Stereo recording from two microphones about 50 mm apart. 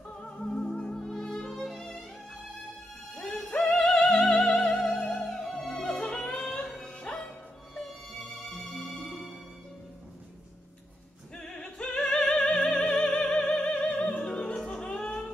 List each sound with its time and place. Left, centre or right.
0.2 s music: centre
3.4 s music: left; by 5.9 s centre
5.9 s music: left
6.6 s music: centre
9.0 s music: centre
11.3 s opera: centre
14.6 s music: centre